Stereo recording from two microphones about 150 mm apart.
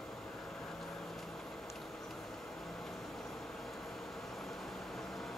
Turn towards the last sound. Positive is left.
turn(degrees=0)  # may be behind; listen again after turning